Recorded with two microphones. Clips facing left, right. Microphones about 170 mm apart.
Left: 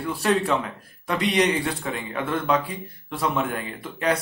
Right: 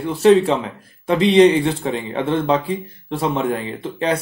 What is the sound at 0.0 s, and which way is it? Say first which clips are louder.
Speech: right 10 dB; 25° right (ahead or behind).